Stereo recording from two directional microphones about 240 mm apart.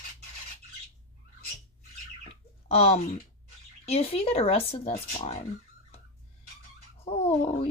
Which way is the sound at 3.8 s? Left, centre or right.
Left.